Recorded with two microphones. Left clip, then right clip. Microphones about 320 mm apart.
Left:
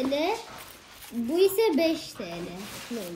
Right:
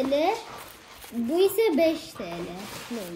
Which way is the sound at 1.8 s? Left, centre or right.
Centre.